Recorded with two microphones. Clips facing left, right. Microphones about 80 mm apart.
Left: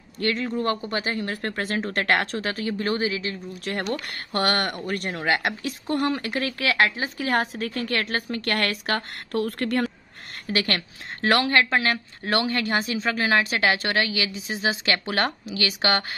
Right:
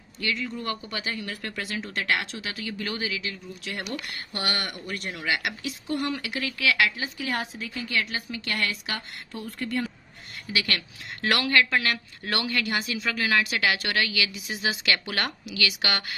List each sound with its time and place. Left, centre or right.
0.2 s a woman's voice: left
10.4 s a woman's voice: left